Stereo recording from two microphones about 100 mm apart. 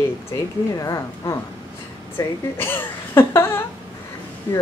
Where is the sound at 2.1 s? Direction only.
20° left (ahead or behind).